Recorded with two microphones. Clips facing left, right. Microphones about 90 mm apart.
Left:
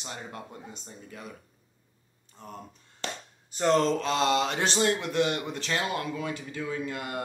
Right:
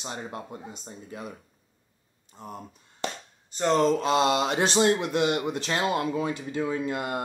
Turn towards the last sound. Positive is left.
turn(degrees=-25)  # may be behind; listen again after turning